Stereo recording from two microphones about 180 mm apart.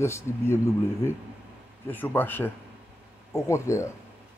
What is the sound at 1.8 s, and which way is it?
Speech, 10° left (ahead or behind).